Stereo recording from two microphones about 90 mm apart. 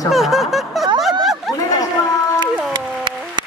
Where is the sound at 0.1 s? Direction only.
Centre (ahead or behind).